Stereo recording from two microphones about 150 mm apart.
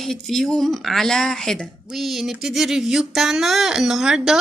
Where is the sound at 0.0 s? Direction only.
Centre (ahead or behind).